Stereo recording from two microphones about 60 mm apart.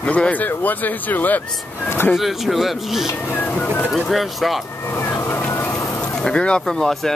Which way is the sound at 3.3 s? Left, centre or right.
Left.